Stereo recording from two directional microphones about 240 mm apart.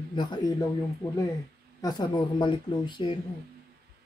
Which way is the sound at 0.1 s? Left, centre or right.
Centre.